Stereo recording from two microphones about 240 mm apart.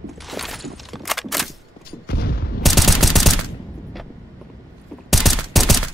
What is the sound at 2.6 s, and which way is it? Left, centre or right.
Fusillade, centre.